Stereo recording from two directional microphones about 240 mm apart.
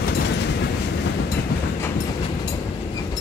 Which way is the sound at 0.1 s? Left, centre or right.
Left.